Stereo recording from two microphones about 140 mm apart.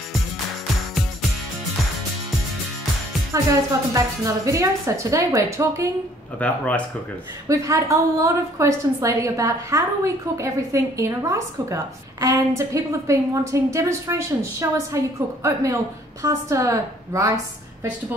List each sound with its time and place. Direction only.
3.4 s a woman's voice: 25° right (ahead or behind)
6.4 s speech: 10° left (ahead or behind)
7.4 s a woman's voice: 20° right (ahead or behind)